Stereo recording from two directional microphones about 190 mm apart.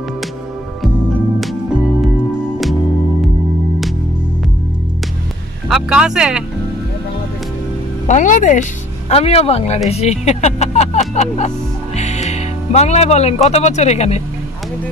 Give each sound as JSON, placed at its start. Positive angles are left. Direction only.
{"t": 1.4, "sound": "music", "side_deg": 0}
{"t": 5.7, "sound": "speech", "side_deg": -5}
{"t": 8.1, "sound": "speech", "side_deg": 40}